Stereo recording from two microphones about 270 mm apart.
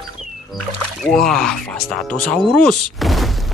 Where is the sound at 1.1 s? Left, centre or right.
Centre.